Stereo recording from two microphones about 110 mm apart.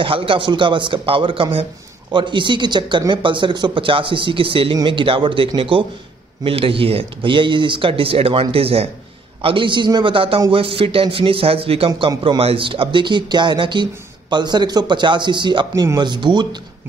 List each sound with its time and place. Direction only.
0.0 s a man's voice: 55° right (ahead or behind)